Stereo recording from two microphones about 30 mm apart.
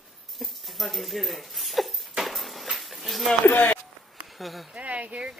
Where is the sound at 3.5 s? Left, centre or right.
Left.